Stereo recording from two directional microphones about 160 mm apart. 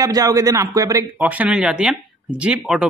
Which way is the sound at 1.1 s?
10° right (ahead or behind).